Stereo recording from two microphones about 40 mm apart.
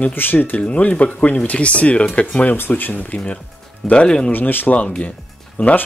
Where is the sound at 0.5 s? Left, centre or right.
Left.